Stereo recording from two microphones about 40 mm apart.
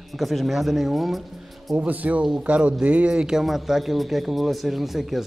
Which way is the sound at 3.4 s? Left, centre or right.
Centre.